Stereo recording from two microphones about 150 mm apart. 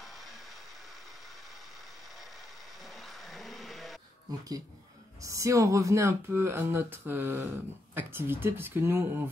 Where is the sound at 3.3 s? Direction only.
Centre (ahead or behind).